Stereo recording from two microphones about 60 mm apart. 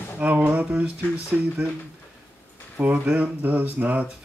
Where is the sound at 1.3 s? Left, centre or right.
Centre.